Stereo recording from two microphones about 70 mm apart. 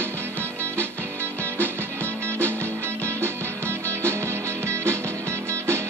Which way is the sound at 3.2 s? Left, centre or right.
Right.